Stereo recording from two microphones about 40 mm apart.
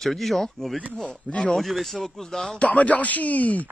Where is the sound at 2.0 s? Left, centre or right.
Centre.